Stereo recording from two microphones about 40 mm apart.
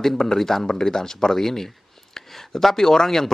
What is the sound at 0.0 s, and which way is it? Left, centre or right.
Speech, centre.